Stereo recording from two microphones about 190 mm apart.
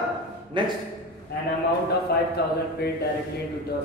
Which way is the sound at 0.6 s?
25° right (ahead or behind).